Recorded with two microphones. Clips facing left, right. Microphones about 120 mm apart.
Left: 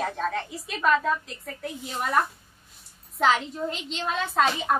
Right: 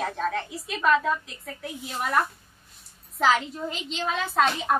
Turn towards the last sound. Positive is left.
turn(degrees=0)  # may be behind; listen again after turning